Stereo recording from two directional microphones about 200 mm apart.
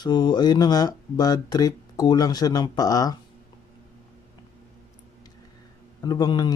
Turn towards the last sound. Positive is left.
turn(degrees=20)  # may be behind; listen again after turning